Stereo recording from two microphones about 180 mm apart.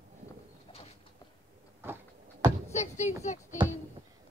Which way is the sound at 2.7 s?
40° left (ahead or behind).